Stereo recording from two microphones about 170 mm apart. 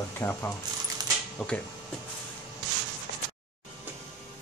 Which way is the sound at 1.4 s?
Centre (ahead or behind).